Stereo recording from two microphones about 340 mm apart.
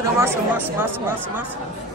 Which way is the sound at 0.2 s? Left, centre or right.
Centre.